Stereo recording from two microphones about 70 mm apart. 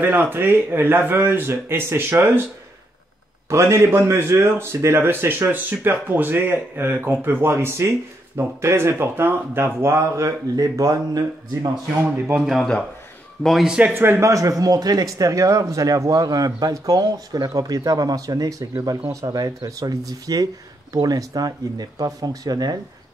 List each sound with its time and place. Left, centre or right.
0.0 s a man's voice: right
3.4 s a man's voice: right
13.4 s speech: centre
13.7 s a man's voice: centre
13.9 s a man's voice: right
14.2 s speech: right